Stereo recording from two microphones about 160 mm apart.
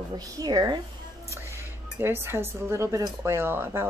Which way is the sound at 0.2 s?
25° right (ahead or behind).